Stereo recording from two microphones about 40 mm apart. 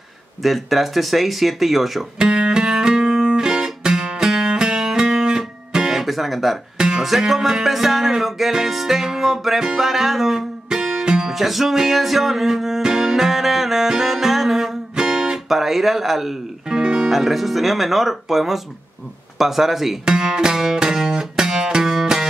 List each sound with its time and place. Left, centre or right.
0.4 s speech: centre
2.1 s music: right
5.7 s guitar: centre
7.0 s music: centre
15.4 s speech: centre
17.1 s speech: centre
20.1 s music: centre